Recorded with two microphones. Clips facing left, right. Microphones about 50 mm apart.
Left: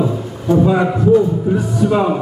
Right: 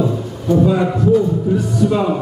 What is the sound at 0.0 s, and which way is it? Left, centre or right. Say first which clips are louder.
A man's voice: even; centre.